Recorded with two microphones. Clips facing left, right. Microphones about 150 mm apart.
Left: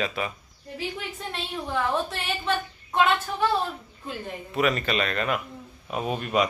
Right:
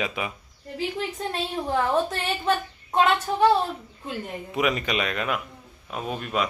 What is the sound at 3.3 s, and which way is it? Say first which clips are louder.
Speech: right 5 dB; 35° right (ahead or behind).